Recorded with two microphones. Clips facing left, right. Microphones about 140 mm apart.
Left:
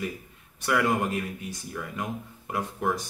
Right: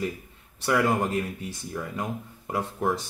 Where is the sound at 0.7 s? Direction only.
35° right (ahead or behind).